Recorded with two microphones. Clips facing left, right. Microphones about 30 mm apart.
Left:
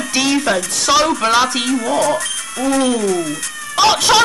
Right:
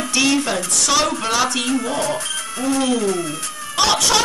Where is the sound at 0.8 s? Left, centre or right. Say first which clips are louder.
Left 6 dB; centre.